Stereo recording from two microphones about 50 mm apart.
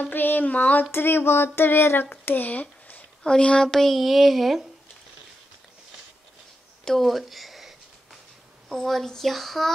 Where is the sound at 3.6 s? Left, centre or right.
Centre.